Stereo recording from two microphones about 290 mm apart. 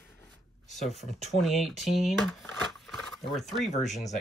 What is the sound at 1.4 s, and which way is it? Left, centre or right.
Speech, centre.